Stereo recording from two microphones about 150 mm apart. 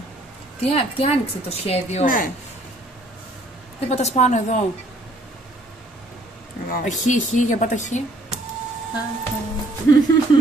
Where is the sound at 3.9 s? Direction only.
45° left (ahead or behind).